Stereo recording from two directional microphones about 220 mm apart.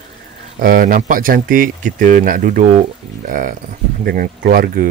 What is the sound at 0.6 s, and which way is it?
Speech, 40° right (ahead or behind).